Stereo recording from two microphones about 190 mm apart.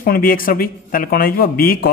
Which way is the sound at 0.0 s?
50° left (ahead or behind).